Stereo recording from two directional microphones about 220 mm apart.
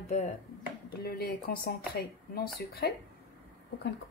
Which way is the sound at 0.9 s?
45° left (ahead or behind).